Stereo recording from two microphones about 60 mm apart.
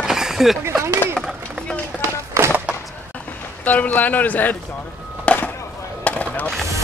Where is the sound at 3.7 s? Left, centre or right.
Left.